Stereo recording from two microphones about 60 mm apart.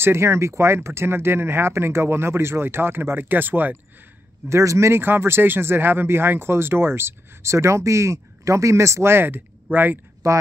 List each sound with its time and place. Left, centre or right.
0.0 s speech: right
4.5 s speech: right
10.2 s speech: right